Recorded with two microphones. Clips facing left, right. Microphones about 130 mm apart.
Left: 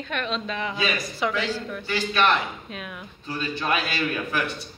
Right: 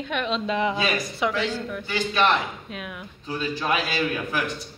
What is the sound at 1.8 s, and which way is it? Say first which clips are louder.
Speech: even; 15° right (ahead or behind).